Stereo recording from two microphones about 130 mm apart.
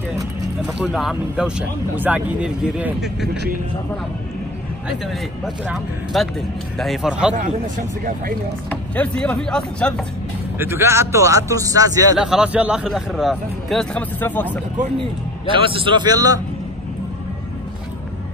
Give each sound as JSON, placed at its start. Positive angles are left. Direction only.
{"t": 0.9, "sound": "a man's voice", "side_deg": -5}
{"t": 4.8, "sound": "a man's voice", "side_deg": -5}
{"t": 7.3, "sound": "speech", "side_deg": -90}
{"t": 8.6, "sound": "speech", "side_deg": 10}
{"t": 10.6, "sound": "speech", "side_deg": -20}
{"t": 12.2, "sound": "a man's voice", "side_deg": -5}
{"t": 14.2, "sound": "speech", "side_deg": 15}
{"t": 15.5, "sound": "a man's voice", "side_deg": -40}